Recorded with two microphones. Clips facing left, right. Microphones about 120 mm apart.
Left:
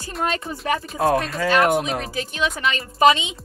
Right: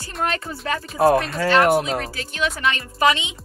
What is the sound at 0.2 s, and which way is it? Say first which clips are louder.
Speech: even; 20° left (ahead or behind).